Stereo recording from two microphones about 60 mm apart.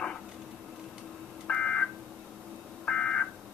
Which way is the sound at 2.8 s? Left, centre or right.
Centre.